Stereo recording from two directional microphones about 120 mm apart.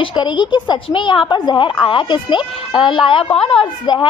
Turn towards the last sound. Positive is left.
turn(degrees=45)  # may be behind; listen again after turning